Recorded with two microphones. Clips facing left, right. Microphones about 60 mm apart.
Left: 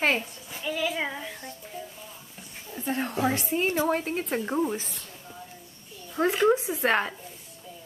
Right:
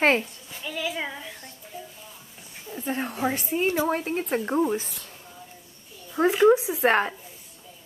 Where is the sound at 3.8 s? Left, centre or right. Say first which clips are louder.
Right 1 dB; centre.